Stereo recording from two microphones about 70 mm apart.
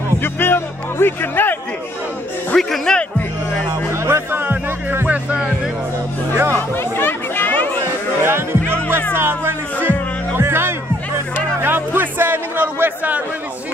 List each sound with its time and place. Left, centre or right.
0.2 s speech: left
2.5 s speech: centre
3.9 s music: right
6.5 s music: left
8.2 s music: right
8.6 s music: centre
9.1 s music: right